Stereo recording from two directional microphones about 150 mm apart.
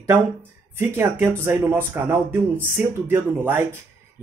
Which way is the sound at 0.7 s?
15° right (ahead or behind).